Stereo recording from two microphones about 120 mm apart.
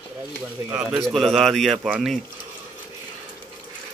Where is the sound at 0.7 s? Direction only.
5° right (ahead or behind).